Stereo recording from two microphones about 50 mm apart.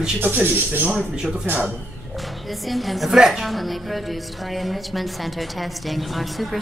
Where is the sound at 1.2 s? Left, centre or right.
Centre.